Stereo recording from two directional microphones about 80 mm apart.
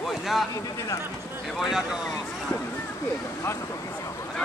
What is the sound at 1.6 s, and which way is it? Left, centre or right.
Speech, centre.